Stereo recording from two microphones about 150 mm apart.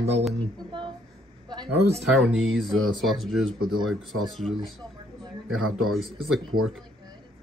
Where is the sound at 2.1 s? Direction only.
Centre (ahead or behind).